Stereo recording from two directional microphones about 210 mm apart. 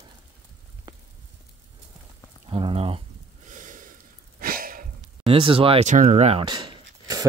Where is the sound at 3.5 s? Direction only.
35° right (ahead or behind).